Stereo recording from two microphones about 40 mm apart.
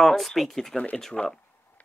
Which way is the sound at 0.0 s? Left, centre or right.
Centre.